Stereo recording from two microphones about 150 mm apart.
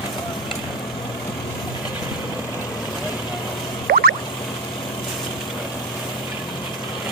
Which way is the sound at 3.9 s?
90° right.